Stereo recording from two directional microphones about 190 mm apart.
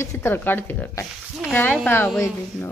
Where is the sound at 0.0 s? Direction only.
15° left (ahead or behind).